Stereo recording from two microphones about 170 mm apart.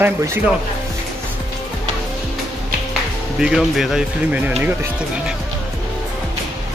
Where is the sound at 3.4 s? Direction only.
5° right (ahead or behind).